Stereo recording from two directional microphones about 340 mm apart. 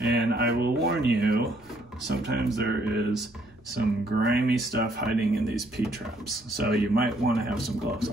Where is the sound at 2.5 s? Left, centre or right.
Right.